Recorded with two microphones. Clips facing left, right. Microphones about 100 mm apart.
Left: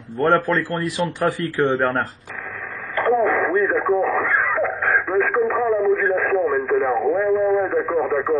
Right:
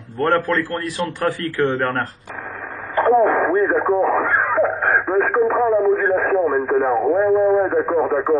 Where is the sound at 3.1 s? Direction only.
30° right (ahead or behind).